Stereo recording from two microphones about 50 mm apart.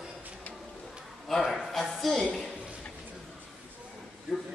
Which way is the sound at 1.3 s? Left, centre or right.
Centre.